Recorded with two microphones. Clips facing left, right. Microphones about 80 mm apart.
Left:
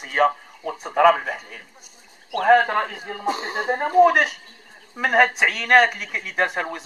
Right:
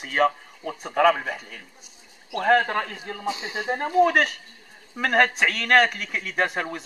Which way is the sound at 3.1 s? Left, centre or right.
Left.